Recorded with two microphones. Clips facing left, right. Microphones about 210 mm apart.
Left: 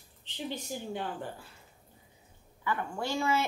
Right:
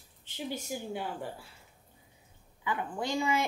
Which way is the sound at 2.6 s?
15° right (ahead or behind).